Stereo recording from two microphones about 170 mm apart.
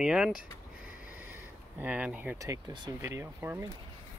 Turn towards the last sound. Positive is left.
turn(degrees=-15)  # may be behind; listen again after turning